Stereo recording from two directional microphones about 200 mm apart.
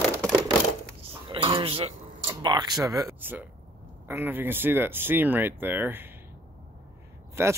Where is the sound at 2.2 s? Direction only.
20° right (ahead or behind).